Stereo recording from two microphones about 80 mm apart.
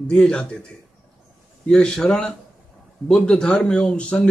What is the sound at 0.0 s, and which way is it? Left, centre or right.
A man's voice, centre.